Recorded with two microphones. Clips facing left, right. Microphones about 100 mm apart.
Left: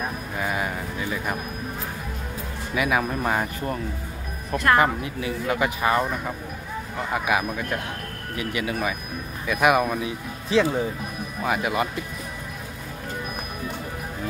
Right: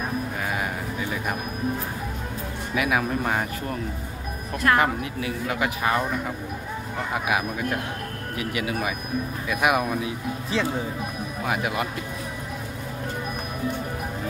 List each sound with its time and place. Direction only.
0.4 s music: centre (ahead or behind)
2.7 s speech: centre (ahead or behind)
7.2 s speech: 5° right (ahead or behind)